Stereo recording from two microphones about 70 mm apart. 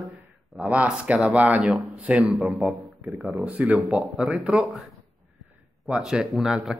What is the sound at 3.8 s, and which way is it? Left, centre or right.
Speech, centre.